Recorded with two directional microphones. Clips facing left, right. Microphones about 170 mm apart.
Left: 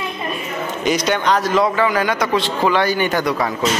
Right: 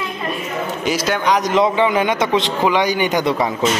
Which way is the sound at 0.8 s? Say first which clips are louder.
Left 1 dB; 5° right (ahead or behind).